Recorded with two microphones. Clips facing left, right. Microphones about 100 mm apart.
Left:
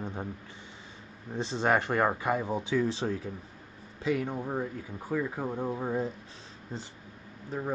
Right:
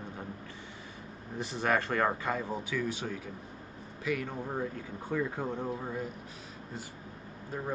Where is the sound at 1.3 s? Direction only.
25° left (ahead or behind).